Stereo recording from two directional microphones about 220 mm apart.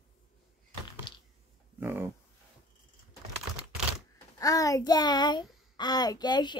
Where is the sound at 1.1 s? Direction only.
20° left (ahead or behind).